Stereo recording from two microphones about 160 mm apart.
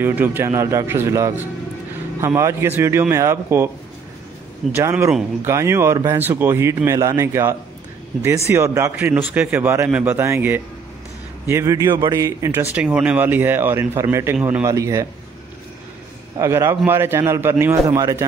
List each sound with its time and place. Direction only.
0.0 s a man's voice: 10° right (ahead or behind)
4.7 s a man's voice: 15° right (ahead or behind)
12.7 s a man's voice: 5° right (ahead or behind)
16.3 s a man's voice: 15° right (ahead or behind)